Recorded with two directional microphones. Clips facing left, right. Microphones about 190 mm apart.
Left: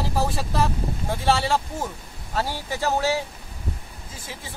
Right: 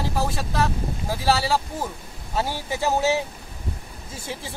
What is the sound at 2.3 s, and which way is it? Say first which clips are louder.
Speech: right 1 dB; 15° right (ahead or behind).